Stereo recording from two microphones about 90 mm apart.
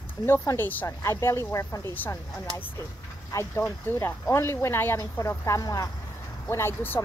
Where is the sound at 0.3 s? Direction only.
25° left (ahead or behind).